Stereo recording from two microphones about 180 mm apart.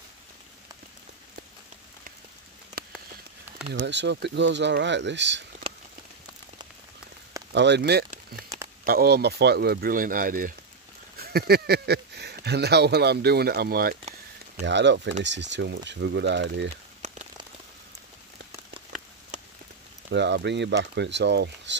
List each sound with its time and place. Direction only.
2.8 s a sound: 55° right (ahead or behind)
3.7 s speech: 75° right (ahead or behind)
7.5 s speech: 75° right (ahead or behind); by 10.5 s 50° right (ahead or behind)
11.1 s speech: 60° right (ahead or behind)
14.6 s speech: 75° right (ahead or behind)
17.0 s rain on surface: 40° right (ahead or behind)
19.3 s a sound: 40° right (ahead or behind)
20.1 s speech: 75° right (ahead or behind)